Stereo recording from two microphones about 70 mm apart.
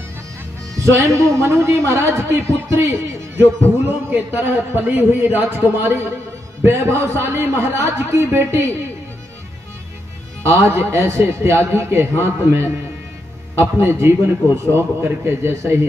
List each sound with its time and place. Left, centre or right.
0.7 s a man's voice: right
4.1 s a man's voice: right
10.4 s a man's voice: right